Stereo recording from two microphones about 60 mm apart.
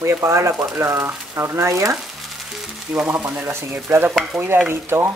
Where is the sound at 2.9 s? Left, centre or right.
Right.